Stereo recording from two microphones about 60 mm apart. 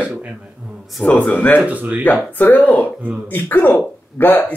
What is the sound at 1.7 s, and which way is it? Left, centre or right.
Speech, right.